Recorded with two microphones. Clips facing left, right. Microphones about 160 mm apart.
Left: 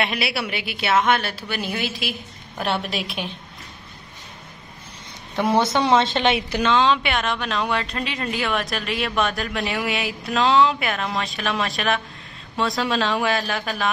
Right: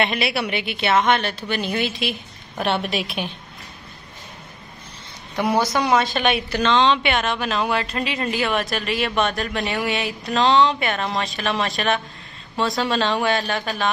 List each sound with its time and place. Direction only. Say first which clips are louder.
0.0 s speech: right 3 dB; 5° left (ahead or behind)
5.5 s a woman's voice: left 1 dB; 25° left (ahead or behind)
6.6 s speech: right 1 dB; 5° left (ahead or behind)